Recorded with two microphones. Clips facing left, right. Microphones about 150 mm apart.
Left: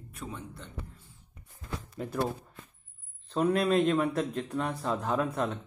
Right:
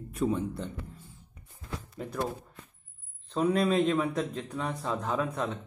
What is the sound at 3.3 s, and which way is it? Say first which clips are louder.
A man's voice: even; centre (ahead or behind).